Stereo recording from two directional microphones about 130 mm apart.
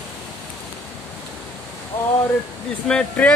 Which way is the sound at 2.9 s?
5° left (ahead or behind).